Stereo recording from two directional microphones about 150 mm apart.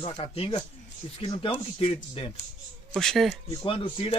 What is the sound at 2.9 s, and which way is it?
Speech, 5° left (ahead or behind).